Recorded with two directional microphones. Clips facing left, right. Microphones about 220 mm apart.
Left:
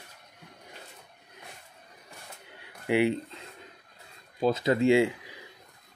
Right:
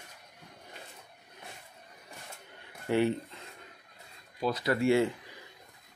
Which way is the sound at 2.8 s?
15° left (ahead or behind).